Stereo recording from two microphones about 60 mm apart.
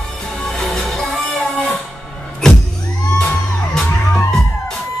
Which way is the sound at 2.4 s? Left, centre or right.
Centre.